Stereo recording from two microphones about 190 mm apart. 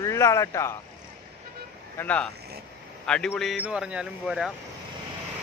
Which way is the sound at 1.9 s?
10° left (ahead or behind).